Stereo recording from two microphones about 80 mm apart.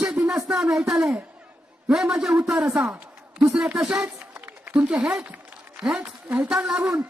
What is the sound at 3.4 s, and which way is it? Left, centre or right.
Speech, centre.